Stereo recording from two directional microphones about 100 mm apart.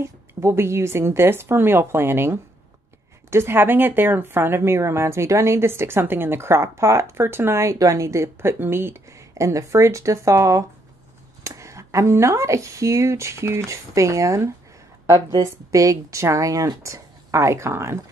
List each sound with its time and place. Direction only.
0.0 s a woman's voice: 25° right (ahead or behind)